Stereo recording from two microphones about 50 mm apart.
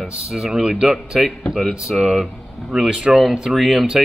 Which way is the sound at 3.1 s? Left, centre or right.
Centre.